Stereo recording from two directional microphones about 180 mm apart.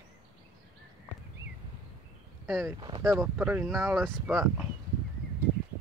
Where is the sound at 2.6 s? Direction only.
20° right (ahead or behind).